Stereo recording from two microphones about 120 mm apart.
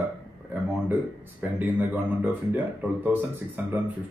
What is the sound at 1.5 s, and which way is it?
Speech, 15° right (ahead or behind).